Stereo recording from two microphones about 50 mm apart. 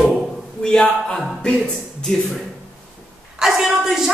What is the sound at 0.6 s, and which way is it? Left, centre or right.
Mantra, centre.